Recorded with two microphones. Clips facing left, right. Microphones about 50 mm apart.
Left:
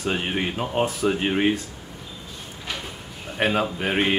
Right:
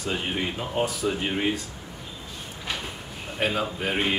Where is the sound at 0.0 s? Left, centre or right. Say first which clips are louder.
Left 3 dB; left.